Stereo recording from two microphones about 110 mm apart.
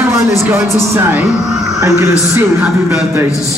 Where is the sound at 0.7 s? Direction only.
20° right (ahead or behind).